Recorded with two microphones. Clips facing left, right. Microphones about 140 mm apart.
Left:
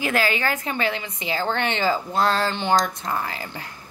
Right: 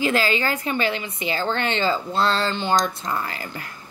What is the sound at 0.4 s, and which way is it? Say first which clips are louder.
Speech: right 1 dB; 15° right (ahead or behind).